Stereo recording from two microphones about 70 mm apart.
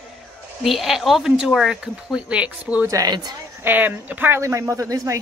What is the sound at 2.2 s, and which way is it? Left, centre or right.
Speech, centre.